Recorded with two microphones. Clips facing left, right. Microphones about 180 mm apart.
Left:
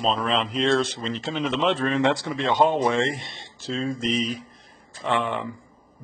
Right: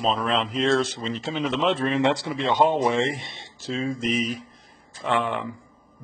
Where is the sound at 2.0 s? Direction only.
15° right (ahead or behind).